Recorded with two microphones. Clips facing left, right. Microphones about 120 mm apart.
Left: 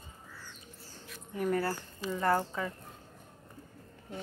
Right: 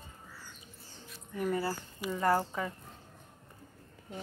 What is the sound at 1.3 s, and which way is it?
Speech, 5° right (ahead or behind).